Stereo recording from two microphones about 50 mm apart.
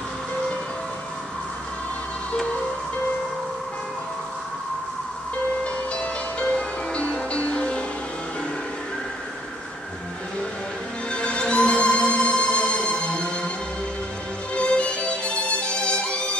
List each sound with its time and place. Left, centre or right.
5.6 s music: left
11.1 s music: left
14.5 s music: left